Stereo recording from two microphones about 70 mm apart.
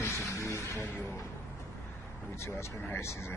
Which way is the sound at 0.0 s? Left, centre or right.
Left.